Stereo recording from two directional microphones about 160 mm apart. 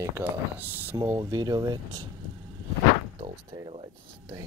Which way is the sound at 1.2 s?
25° right (ahead or behind).